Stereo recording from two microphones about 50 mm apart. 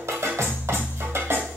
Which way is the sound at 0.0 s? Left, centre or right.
Right.